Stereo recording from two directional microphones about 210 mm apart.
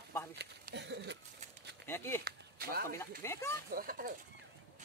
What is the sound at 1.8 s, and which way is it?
Speech, 10° left (ahead or behind).